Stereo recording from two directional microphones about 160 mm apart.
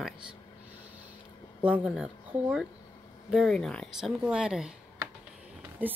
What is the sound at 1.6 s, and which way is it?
Speech, 5° right (ahead or behind).